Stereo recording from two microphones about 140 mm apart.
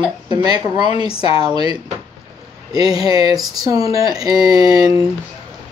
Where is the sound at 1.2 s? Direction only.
40° left (ahead or behind).